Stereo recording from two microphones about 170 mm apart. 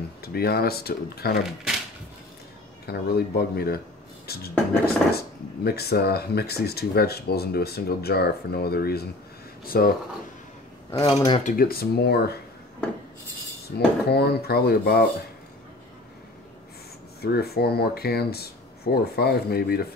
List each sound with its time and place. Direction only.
0.2 s speech: 65° left (ahead or behind)
2.9 s speech: 65° left (ahead or behind)
11.0 s speech: 30° left (ahead or behind)
11.4 s speech: 60° left (ahead or behind)
13.7 s speech: 70° left (ahead or behind)
17.2 s speech: 65° left (ahead or behind)